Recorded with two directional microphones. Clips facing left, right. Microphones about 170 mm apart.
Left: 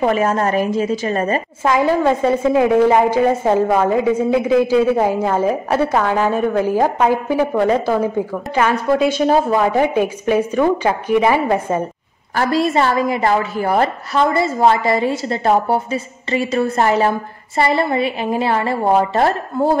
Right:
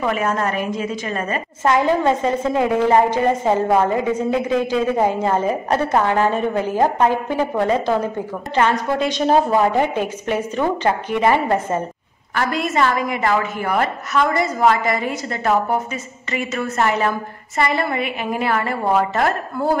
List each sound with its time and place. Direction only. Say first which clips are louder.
0.0 s a woman's voice: left 4 dB; 35° left (ahead or behind)
1.6 s a woman's voice: left 1 dB; 10° left (ahead or behind)
8.5 s a woman's voice: left 3 dB; 10° left (ahead or behind)
12.4 s a woman's voice: left 4 dB; 35° left (ahead or behind)